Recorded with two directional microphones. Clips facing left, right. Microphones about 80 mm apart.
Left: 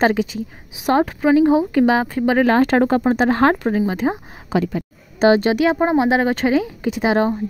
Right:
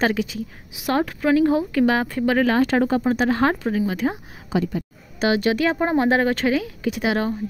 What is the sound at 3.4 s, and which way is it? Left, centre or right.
Speech, left.